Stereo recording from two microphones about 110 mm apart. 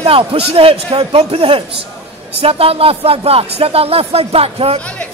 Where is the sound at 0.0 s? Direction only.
55° right (ahead or behind).